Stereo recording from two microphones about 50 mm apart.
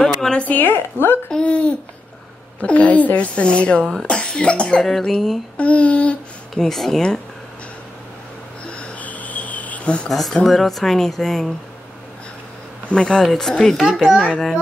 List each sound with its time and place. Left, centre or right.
0.0 s a sound: centre
0.4 s speech: left
0.7 s a woman's voice: left
1.3 s a sound: left
2.6 s a woman's voice: left
4.8 s speech: centre
5.6 s a woman's voice: left
6.5 s speech: centre
8.7 s cricket: left
10.0 s speech: centre
12.9 s a woman's voice: centre
13.2 s speech: centre
14.0 s a child's voice: centre